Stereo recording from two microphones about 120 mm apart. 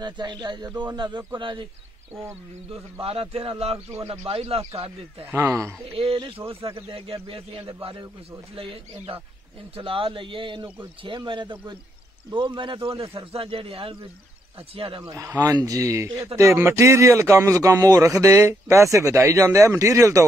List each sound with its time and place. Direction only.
0.0 s a man's voice: 40° right (ahead or behind)
2.7 s a man's voice: 50° right (ahead or behind)
3.7 s a man's voice: 25° right (ahead or behind)
4.1 s a man's voice: 55° right (ahead or behind)
5.2 s a man's voice: 20° right (ahead or behind)
6.1 s a man's voice: 45° right (ahead or behind)
15.0 s a man's voice: 25° right (ahead or behind)